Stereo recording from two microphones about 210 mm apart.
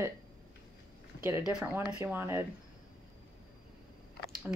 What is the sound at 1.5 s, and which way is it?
Speech, 5° right (ahead or behind).